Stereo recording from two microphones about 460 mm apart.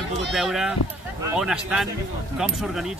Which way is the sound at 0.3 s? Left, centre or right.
Centre.